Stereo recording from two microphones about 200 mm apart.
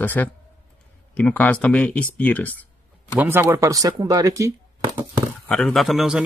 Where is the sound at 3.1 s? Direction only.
10° right (ahead or behind).